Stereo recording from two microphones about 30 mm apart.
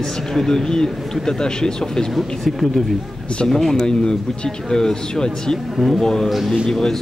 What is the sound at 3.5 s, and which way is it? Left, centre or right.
Speech, centre.